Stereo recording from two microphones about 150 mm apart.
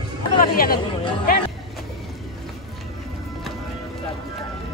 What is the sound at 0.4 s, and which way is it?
Speech, 75° left (ahead or behind).